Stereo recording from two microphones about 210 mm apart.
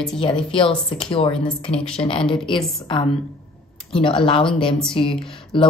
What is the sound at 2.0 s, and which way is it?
Speech, 25° left (ahead or behind).